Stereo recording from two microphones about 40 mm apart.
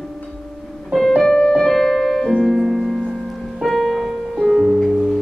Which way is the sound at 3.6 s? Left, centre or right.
Centre.